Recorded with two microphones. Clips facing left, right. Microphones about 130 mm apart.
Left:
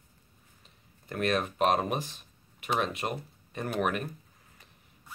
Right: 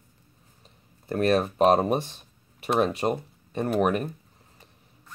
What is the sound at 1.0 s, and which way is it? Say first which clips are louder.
Speech: right 6 dB; 35° right (ahead or behind).